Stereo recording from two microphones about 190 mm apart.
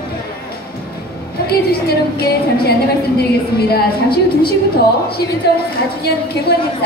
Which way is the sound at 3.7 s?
55° left (ahead or behind).